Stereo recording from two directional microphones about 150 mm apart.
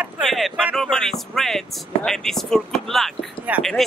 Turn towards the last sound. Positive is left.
turn(degrees=-10)  # may be behind; listen again after turning